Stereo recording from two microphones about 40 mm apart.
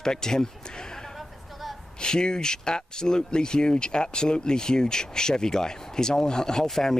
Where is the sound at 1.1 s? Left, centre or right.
Centre.